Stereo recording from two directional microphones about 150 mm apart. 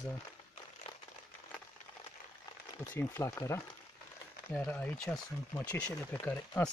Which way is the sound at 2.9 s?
15° left (ahead or behind).